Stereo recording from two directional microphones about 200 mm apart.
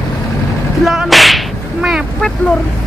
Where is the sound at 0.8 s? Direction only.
Centre (ahead or behind).